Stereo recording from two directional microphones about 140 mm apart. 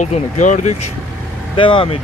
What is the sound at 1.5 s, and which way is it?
Speech, 40° left (ahead or behind).